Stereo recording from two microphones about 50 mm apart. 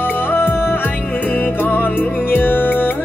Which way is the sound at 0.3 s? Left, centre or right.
Left.